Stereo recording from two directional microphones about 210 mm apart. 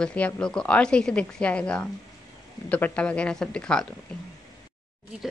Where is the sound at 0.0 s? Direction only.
5° left (ahead or behind).